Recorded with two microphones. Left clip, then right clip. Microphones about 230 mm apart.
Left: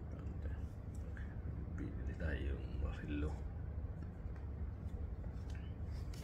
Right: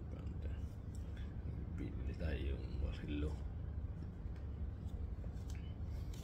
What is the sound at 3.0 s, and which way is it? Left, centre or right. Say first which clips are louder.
Speech: even; centre.